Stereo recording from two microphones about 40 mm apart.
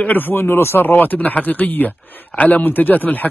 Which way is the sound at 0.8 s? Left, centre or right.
Left.